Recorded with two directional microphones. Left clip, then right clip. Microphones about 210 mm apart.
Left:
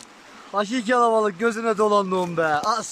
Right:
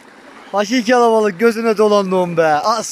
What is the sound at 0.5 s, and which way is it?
Speech, centre (ahead or behind).